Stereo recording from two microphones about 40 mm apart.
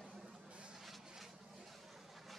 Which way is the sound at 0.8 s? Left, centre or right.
Centre.